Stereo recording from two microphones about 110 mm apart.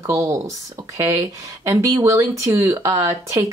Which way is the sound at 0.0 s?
25° right (ahead or behind).